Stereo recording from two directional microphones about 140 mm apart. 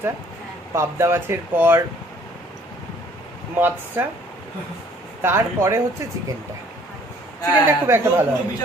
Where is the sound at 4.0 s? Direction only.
15° right (ahead or behind).